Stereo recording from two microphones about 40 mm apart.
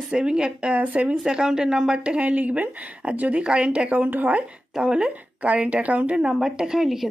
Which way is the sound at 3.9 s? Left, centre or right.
Right.